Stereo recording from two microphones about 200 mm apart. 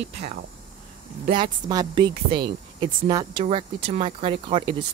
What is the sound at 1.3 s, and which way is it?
Speech, 20° right (ahead or behind).